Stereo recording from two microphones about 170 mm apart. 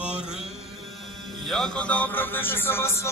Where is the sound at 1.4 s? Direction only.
Centre (ahead or behind).